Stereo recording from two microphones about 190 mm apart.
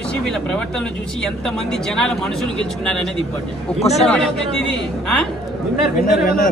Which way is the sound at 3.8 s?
35° left (ahead or behind).